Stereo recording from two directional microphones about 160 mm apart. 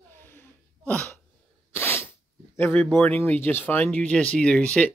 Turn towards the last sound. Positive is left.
turn(degrees=5)  # may be behind; listen again after turning